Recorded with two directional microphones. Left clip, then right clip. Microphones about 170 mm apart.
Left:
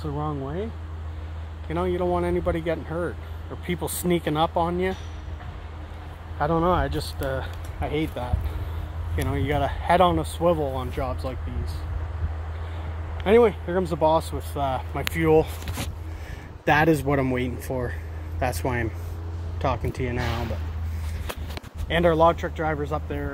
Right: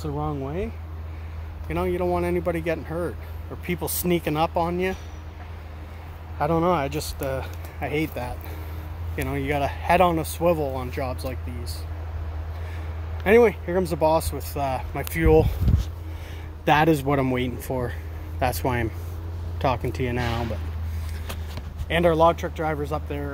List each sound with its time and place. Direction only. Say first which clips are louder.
0.0 s speech: right 1 dB; 5° right (ahead or behind)
1.7 s speech: even; 5° right (ahead or behind)
6.4 s speech: even; 5° right (ahead or behind)
6.9 s speech: right 1 dB; 45° right (ahead or behind)
7.2 s speech: even; 10° right (ahead or behind)
13.2 s speech: right 1 dB; 10° right (ahead or behind)
16.6 s speech: right 1 dB; 10° right (ahead or behind)
19.6 s speech: right 2 dB; 30° right (ahead or behind)
21.8 s speech: even; 10° right (ahead or behind)